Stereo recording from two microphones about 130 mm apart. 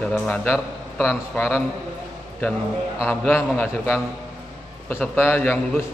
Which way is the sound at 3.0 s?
20° left (ahead or behind).